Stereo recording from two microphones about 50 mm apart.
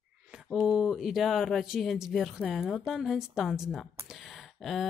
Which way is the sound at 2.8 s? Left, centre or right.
Centre.